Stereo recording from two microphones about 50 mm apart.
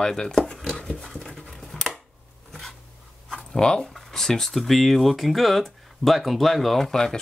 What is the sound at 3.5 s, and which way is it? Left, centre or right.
Speech, centre.